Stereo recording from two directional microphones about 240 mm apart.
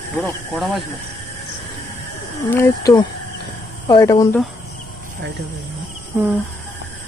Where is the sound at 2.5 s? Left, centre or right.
Centre.